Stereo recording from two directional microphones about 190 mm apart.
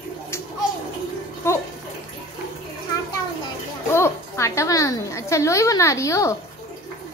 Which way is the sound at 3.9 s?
15° left (ahead or behind).